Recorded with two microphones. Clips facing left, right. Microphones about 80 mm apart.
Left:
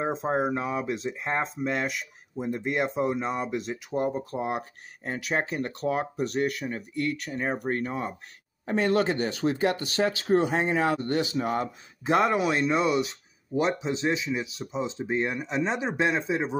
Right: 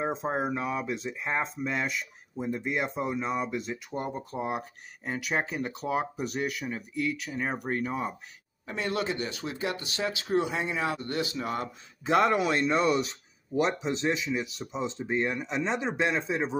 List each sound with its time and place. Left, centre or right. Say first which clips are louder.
0.0 s speech: left 3 dB; centre
8.6 s speech: left 7 dB; left
12.1 s speech: left 1 dB; centre